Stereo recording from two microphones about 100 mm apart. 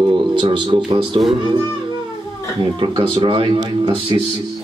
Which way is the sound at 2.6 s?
55° right (ahead or behind).